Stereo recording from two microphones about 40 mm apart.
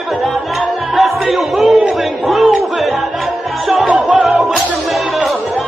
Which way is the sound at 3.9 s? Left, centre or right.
Right.